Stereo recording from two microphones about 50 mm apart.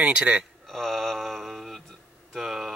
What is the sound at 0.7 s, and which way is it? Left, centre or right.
Mantra, centre.